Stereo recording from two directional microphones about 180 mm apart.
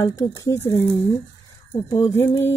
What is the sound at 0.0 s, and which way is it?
A woman's voice, 20° left (ahead or behind).